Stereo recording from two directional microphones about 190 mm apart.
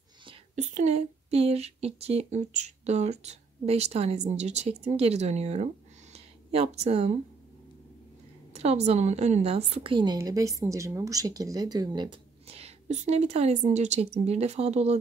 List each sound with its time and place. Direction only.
0.2 s a woman's voice: 30° right (ahead or behind)
8.5 s a woman's voice: 35° right (ahead or behind)